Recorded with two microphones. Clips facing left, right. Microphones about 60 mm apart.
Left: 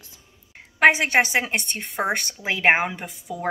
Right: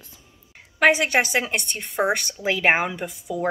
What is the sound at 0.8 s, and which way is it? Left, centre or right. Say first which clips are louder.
A woman's voice: left 1 dB; left.